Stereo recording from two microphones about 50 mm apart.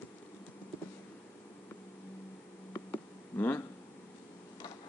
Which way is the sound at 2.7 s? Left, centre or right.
Left.